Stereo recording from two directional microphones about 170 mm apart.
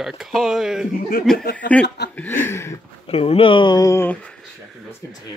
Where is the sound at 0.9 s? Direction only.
60° left (ahead or behind).